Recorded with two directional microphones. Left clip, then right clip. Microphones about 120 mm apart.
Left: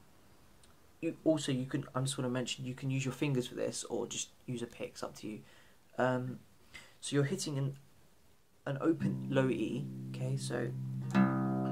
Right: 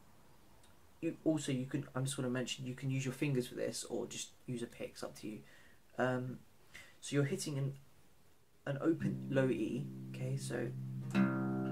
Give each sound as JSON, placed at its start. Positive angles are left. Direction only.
{"t": 1.2, "sound": "speech", "side_deg": 25}
{"t": 8.6, "sound": "speech", "side_deg": 10}
{"t": 11.1, "sound": "music", "side_deg": 30}